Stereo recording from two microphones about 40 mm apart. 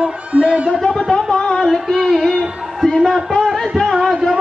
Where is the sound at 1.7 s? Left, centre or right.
Centre.